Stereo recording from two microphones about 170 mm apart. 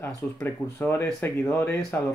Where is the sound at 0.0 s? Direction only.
15° left (ahead or behind).